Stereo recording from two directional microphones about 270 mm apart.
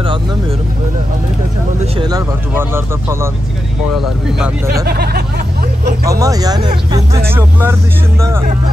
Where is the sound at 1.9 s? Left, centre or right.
Centre.